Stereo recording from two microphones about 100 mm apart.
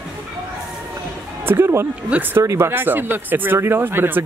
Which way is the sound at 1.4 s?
25° right (ahead or behind).